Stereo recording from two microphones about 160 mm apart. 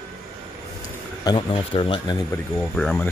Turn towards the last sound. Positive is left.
turn(degrees=5)  # may be behind; listen again after turning